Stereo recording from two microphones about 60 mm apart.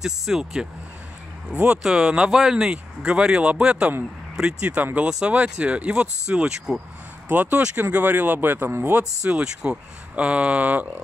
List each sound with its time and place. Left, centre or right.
0.0 s speech: centre
7.2 s speech: right
9.2 s speech: centre